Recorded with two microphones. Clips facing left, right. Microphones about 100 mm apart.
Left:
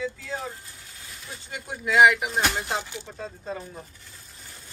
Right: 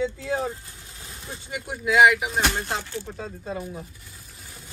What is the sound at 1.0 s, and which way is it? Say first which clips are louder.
Vehicle: right 3 dB; 30° right (ahead or behind).